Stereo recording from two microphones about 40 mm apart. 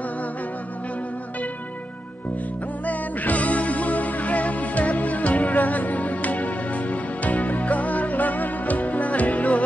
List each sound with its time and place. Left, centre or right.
2.9 s music: left